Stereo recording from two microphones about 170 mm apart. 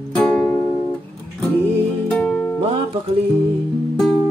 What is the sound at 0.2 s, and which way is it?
Music, 5° left (ahead or behind).